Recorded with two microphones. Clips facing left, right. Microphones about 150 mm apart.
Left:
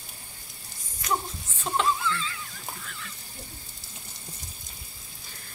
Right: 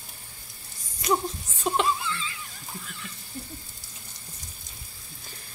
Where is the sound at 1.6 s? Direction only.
15° right (ahead or behind).